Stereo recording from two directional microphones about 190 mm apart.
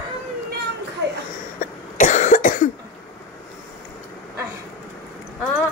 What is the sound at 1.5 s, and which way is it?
Cough, 40° left (ahead or behind).